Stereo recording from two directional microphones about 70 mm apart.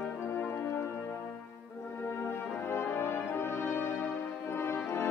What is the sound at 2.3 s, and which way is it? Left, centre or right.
Music, left.